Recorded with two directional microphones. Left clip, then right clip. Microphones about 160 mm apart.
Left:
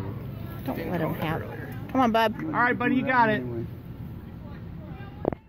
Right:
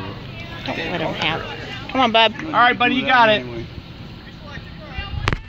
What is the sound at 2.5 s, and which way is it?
Speech, 45° right (ahead or behind).